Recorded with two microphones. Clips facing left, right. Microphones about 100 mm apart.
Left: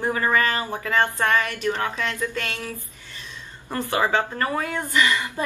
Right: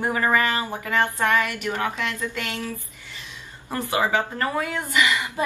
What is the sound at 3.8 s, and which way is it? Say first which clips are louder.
Speech: left 1 dB; 15° right (ahead or behind).